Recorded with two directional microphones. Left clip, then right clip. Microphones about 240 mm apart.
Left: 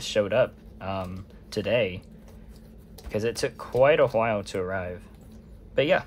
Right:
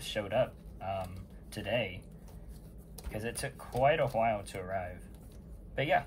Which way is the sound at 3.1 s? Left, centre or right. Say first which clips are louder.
Left 11 dB; centre.